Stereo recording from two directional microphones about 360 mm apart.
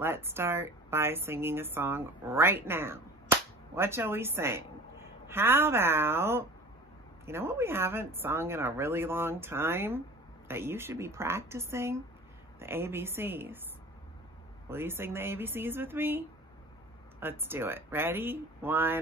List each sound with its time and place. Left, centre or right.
0.0 s speech: centre
14.7 s speech: centre